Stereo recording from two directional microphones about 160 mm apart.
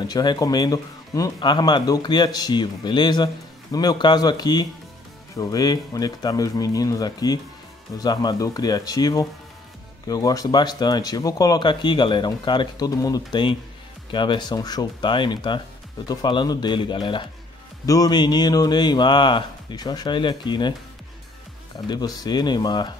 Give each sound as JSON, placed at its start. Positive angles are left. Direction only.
{"t": 0.0, "sound": "speech", "side_deg": 25}
{"t": 21.8, "sound": "speech", "side_deg": 25}